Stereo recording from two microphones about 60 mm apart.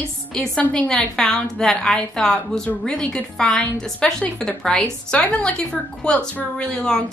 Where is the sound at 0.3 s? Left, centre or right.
Centre.